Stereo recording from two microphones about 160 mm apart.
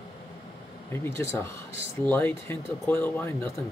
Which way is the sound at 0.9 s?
15° left (ahead or behind).